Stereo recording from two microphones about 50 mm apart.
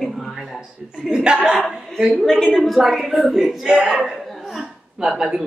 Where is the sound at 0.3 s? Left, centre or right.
Centre.